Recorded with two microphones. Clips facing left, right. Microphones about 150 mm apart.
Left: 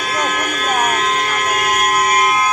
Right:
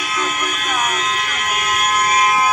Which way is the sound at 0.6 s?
35° left (ahead or behind).